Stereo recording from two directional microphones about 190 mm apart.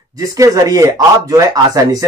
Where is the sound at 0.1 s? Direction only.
20° right (ahead or behind).